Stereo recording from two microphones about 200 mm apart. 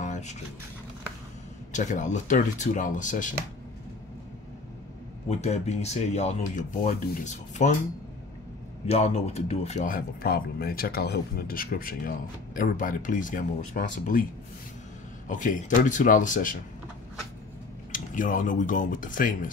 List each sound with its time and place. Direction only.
0.0 s a sound: 35° left (ahead or behind)
1.7 s speech: 40° left (ahead or behind)
5.4 s speech: 35° left (ahead or behind)
8.8 s speech: 30° left (ahead or behind)
15.2 s speech: 40° left (ahead or behind)
17.9 s speech: 40° left (ahead or behind)